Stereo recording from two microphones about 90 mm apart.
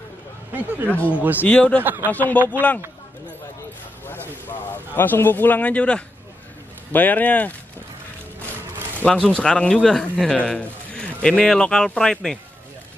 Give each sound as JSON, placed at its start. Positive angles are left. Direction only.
{"t": 0.5, "sound": "speech", "side_deg": -20}
{"t": 0.8, "sound": "speech", "side_deg": 15}
{"t": 1.1, "sound": "speech", "side_deg": -20}
{"t": 1.4, "sound": "speech", "side_deg": 15}
{"t": 1.8, "sound": "speech", "side_deg": -20}
{"t": 2.0, "sound": "speech", "side_deg": 20}
{"t": 2.3, "sound": "speech", "side_deg": -20}
{"t": 4.6, "sound": "speech", "side_deg": 20}
{"t": 9.3, "sound": "a man's voice", "side_deg": 10}